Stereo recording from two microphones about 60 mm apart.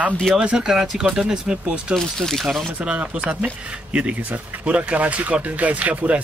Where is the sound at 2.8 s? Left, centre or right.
Right.